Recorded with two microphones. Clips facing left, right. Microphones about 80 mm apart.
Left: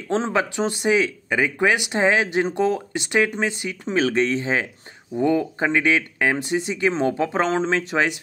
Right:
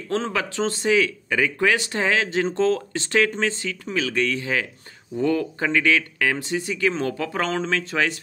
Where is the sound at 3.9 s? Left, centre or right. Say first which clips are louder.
Left 4 dB; left.